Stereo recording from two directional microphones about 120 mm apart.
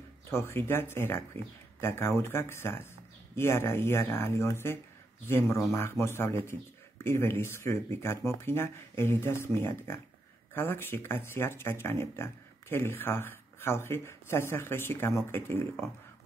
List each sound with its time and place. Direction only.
0.3 s speech: 20° left (ahead or behind)